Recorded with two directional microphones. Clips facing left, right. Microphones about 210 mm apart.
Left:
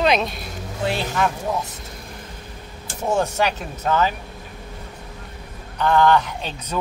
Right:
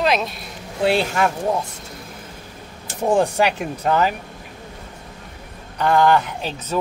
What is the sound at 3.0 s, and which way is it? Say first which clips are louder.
Speech: right 4 dB; 35° right (ahead or behind).